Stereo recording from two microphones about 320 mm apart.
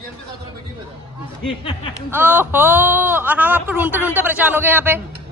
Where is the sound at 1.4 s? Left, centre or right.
Centre.